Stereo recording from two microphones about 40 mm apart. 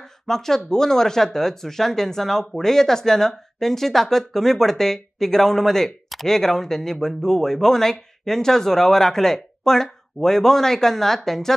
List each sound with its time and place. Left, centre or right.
0.3 s speech: centre